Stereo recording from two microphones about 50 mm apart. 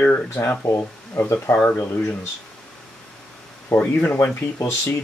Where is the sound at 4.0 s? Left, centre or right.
Left.